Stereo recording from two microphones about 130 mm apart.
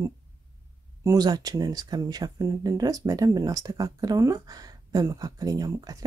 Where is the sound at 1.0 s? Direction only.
25° right (ahead or behind).